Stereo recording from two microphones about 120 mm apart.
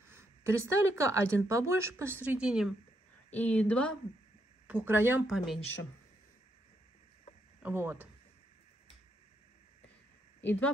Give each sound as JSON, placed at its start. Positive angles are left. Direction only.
{"t": 0.1, "sound": "speech", "side_deg": -20}
{"t": 2.3, "sound": "speech", "side_deg": -5}
{"t": 3.3, "sound": "speech", "side_deg": 15}
{"t": 4.6, "sound": "speech", "side_deg": -15}
{"t": 5.2, "sound": "speech", "side_deg": 0}
{"t": 7.6, "sound": "speech", "side_deg": -20}
{"t": 10.4, "sound": "speech", "side_deg": 15}